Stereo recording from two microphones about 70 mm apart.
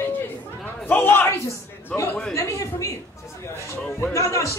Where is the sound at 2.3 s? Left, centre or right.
Left.